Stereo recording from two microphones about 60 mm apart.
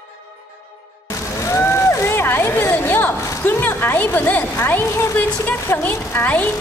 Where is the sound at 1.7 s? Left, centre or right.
Left.